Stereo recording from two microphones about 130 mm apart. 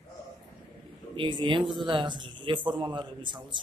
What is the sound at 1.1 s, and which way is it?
A man's voice, 40° right (ahead or behind).